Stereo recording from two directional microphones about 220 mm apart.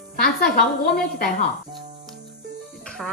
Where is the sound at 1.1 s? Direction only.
40° left (ahead or behind).